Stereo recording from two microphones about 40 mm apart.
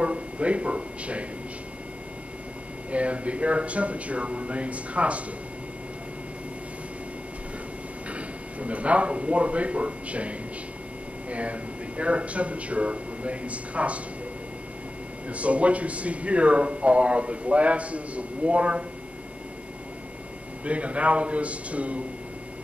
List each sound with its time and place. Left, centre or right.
0.0 s a man's voice: right
2.9 s speech: right
8.1 s speech: right
15.2 s speech: right
20.6 s speech: right